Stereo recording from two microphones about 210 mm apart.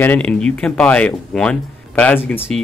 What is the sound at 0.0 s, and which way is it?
Speech, 5° left (ahead or behind).